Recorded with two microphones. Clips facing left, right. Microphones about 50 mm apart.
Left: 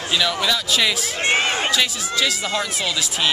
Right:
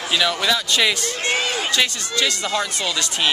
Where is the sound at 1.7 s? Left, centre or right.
Centre.